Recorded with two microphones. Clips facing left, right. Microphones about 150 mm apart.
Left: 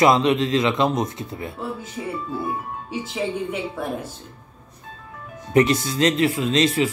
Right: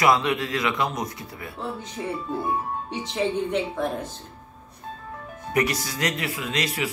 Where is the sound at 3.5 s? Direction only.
10° left (ahead or behind).